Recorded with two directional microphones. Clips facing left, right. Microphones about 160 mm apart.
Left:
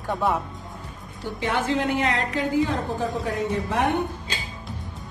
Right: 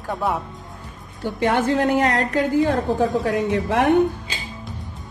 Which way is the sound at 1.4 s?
50° right (ahead or behind).